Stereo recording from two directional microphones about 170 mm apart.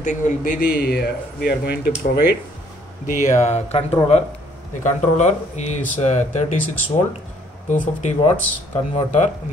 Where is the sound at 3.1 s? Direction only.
50° left (ahead or behind).